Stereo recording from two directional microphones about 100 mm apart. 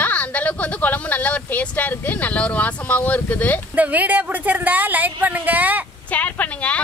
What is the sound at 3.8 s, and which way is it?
A woman's voice, 15° right (ahead or behind).